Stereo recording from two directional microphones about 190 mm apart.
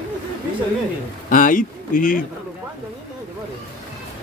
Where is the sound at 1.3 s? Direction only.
45° left (ahead or behind).